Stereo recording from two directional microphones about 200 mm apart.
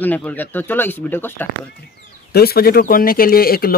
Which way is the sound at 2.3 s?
50° left (ahead or behind).